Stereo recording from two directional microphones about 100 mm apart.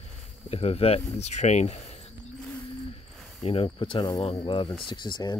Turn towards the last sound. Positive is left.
turn(degrees=50)  # may be behind; listen again after turning